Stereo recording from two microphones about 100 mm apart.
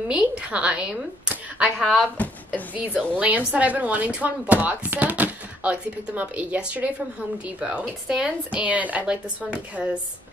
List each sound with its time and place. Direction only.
0.1 s speech: 10° right (ahead or behind)
2.2 s speech: 15° left (ahead or behind)
3.2 s speech: 15° right (ahead or behind)